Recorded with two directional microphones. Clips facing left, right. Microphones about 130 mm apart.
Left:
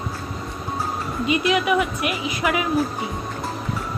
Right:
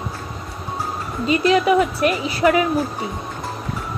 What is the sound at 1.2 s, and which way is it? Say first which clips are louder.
A woman's voice: right 4 dB; 35° right (ahead or behind).